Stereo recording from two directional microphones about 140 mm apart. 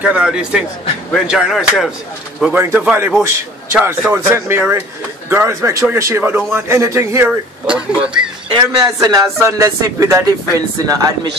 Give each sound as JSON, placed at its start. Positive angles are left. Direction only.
{"t": 0.0, "sound": "a man's voice", "side_deg": -5}
{"t": 7.6, "sound": "speech", "side_deg": -5}
{"t": 8.5, "sound": "a man's voice", "side_deg": -25}